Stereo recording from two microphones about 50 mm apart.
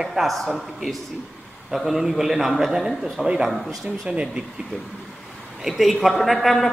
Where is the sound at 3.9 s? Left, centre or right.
Right.